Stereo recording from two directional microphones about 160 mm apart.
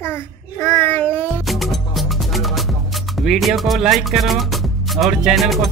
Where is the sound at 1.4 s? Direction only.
Centre (ahead or behind).